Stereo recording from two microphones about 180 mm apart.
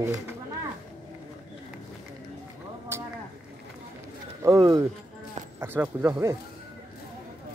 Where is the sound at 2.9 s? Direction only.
15° right (ahead or behind).